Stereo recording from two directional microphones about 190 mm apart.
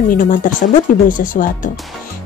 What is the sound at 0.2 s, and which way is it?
Speech, 45° left (ahead or behind).